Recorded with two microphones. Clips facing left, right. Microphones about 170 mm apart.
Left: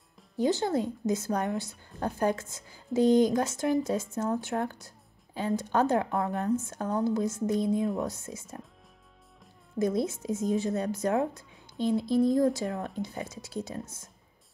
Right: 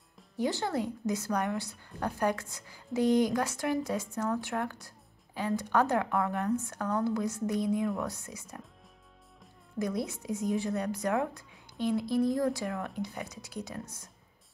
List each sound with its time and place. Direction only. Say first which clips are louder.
0.4 s a woman's voice: left 4 dB; 20° left (ahead or behind)
9.8 s a woman's voice: left 5 dB; 25° left (ahead or behind)